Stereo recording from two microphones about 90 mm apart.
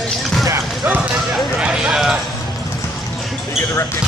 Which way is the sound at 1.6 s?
10° right (ahead or behind).